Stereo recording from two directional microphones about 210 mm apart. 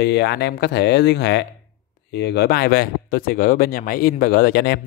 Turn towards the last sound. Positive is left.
turn(degrees=50)  # may be behind; listen again after turning